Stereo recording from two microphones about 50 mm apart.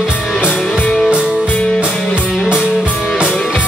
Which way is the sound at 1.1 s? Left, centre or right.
Right.